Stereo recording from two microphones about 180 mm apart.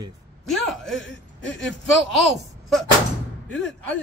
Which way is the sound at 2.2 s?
Centre (ahead or behind).